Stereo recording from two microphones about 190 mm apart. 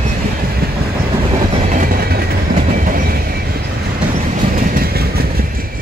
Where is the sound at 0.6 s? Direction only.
55° right (ahead or behind).